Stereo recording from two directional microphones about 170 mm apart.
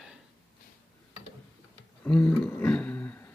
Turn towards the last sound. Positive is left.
turn(degrees=10)  # may be behind; listen again after turning